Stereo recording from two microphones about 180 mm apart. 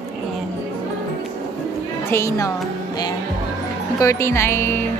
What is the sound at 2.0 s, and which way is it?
Speech, 15° left (ahead or behind).